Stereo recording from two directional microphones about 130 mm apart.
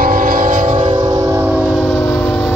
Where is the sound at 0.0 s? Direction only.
90° right.